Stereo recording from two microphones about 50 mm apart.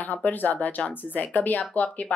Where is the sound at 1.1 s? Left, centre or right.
Left.